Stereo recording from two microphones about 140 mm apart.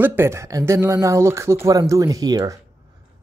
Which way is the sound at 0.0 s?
15° right (ahead or behind).